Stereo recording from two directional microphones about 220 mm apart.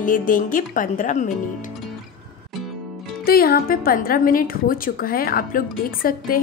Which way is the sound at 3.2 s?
45° left (ahead or behind).